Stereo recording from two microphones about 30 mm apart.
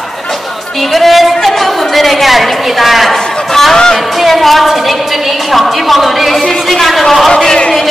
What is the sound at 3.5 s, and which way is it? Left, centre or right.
Chatter, centre.